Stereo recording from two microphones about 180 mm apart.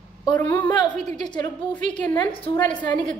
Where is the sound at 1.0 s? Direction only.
40° right (ahead or behind).